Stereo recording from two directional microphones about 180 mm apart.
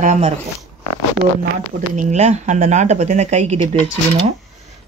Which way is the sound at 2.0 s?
40° right (ahead or behind).